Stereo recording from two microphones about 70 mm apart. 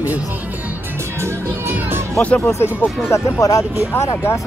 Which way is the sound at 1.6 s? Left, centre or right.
Right.